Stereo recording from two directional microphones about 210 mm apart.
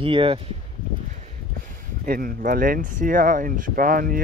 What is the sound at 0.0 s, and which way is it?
Speech, 25° right (ahead or behind).